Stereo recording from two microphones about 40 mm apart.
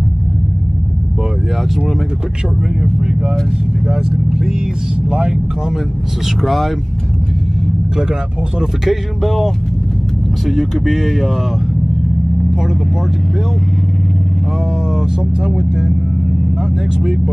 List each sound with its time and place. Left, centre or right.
3.8 s speech: centre
6.4 s speech: centre
8.1 s speech: centre
9.2 s speech: centre
15.0 s speech: centre